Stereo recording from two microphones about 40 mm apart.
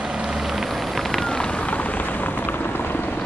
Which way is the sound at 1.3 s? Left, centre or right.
Centre.